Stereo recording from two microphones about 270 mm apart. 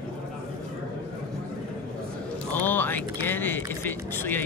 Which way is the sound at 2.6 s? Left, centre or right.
Centre.